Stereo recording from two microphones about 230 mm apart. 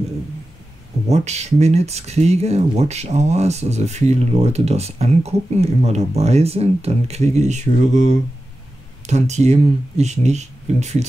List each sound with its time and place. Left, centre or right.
1.0 s speech: right